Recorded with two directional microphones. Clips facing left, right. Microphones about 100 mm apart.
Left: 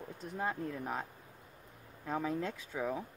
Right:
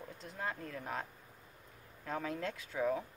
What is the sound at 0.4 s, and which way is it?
Speech, 20° left (ahead or behind).